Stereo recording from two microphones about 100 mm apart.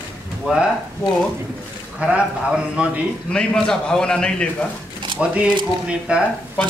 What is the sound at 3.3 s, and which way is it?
A man's voice, 10° left (ahead or behind).